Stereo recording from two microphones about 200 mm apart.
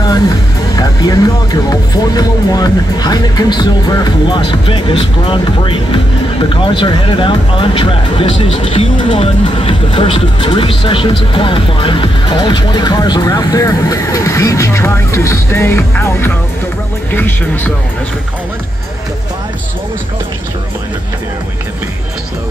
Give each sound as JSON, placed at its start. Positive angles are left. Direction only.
{"t": 0.7, "sound": "speech", "side_deg": 20}